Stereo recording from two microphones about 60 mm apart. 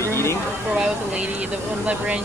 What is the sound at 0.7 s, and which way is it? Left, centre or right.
Speech, centre.